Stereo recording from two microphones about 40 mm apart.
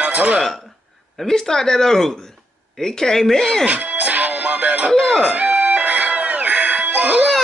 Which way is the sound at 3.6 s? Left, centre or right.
Right.